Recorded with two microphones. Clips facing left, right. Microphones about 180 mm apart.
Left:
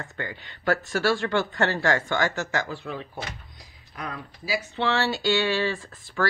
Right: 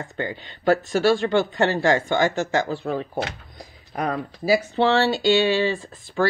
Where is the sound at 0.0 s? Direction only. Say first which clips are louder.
Right 6 dB; 25° right (ahead or behind).